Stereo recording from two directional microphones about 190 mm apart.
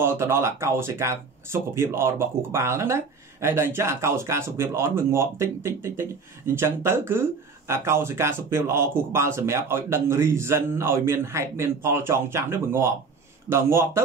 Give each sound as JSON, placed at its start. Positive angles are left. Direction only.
{"t": 0.0, "sound": "speech", "side_deg": -15}